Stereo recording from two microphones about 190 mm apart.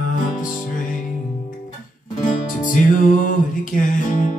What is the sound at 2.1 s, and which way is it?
Music, 45° left (ahead or behind).